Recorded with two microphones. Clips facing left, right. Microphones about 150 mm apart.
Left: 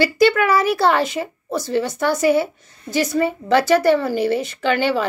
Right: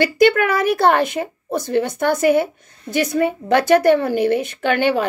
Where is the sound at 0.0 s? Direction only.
55° right (ahead or behind).